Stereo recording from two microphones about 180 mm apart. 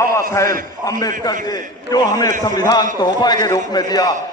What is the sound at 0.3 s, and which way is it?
A man's voice, 20° left (ahead or behind).